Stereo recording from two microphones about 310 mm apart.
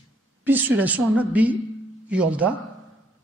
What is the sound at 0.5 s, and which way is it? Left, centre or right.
Speech, centre.